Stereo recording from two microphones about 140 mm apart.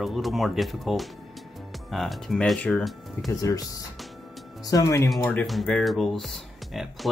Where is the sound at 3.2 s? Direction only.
25° left (ahead or behind).